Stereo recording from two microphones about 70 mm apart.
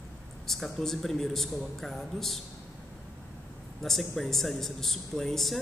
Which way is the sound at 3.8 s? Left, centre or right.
Centre.